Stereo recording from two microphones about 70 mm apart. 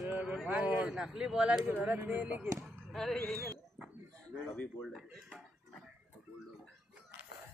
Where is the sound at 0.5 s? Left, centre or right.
Centre.